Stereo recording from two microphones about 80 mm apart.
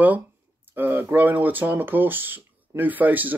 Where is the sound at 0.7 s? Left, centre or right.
Right.